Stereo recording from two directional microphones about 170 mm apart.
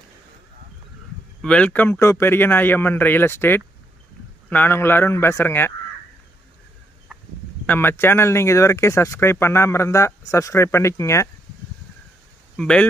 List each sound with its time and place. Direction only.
1.4 s speech: 5° left (ahead or behind)
7.1 s fowl: centre (ahead or behind)
7.6 s speech: 10° left (ahead or behind)
12.5 s speech: 5° left (ahead or behind)